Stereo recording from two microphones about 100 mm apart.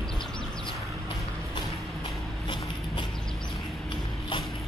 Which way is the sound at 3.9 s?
55° left (ahead or behind).